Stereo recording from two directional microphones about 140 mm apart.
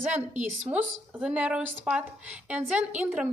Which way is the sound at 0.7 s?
10° right (ahead or behind).